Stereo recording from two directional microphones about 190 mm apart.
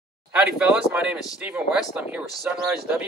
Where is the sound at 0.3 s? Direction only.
5° right (ahead or behind).